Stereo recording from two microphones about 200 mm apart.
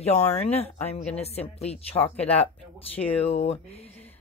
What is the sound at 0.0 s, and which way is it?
Speech, 30° left (ahead or behind).